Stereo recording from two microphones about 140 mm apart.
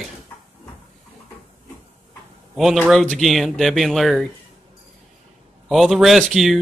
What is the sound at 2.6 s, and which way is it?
Speech, centre (ahead or behind).